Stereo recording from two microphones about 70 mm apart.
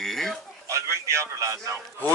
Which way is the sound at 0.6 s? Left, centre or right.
Right.